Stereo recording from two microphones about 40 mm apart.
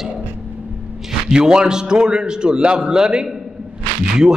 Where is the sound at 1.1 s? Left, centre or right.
Centre.